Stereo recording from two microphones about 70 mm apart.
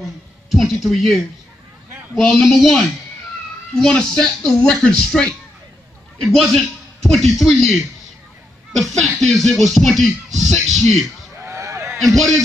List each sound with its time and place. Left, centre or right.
0.5 s speech: centre
0.8 s music: centre
3.7 s speech: centre
6.2 s music: centre
6.5 s a man's voice: centre
8.7 s music: centre
11.4 s a sound: right
12.0 s music: centre